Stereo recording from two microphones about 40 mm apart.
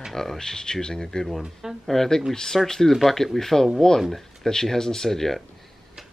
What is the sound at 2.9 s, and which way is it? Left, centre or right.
Speech, centre.